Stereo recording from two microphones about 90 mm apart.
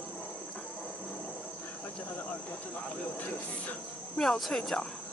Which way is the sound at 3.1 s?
15° left (ahead or behind).